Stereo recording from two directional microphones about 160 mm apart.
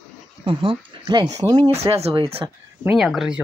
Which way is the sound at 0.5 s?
30° right (ahead or behind).